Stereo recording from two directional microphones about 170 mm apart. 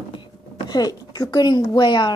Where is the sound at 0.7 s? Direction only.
25° left (ahead or behind).